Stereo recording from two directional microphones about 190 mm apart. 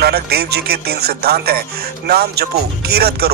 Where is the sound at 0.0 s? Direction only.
55° right (ahead or behind).